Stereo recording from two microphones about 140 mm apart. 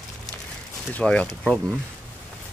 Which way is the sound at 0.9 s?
10° left (ahead or behind).